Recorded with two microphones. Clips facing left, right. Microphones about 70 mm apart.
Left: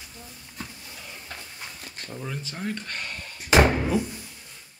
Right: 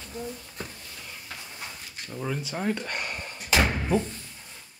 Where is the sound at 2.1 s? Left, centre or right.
Centre.